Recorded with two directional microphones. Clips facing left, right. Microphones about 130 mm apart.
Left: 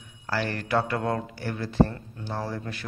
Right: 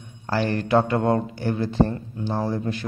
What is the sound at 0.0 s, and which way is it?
Speech, 25° right (ahead or behind).